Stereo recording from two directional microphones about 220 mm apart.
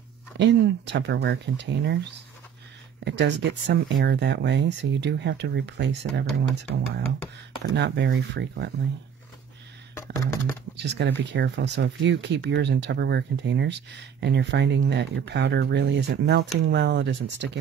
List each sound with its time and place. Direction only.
0.4 s speech: 55° right (ahead or behind)
7.7 s speech: 50° right (ahead or behind)
10.1 s a sound: 10° left (ahead or behind)
10.8 s speech: 50° right (ahead or behind)